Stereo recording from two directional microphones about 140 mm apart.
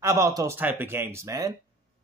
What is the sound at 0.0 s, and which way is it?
A man's voice, 20° right (ahead or behind).